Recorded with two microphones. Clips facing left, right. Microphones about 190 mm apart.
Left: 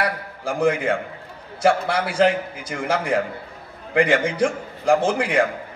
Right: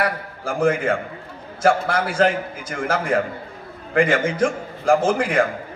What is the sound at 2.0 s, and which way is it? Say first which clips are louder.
A man's voice: even; 15° left (ahead or behind).